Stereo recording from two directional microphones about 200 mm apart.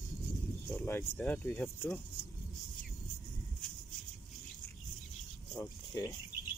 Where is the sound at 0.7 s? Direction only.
10° left (ahead or behind).